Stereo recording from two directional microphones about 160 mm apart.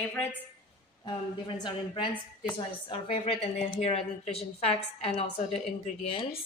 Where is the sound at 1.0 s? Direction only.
30° left (ahead or behind).